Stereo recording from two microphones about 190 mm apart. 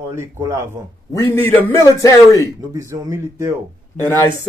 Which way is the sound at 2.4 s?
15° right (ahead or behind).